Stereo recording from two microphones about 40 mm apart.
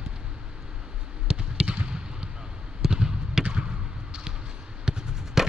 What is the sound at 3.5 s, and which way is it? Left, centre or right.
Basketball bounce, right.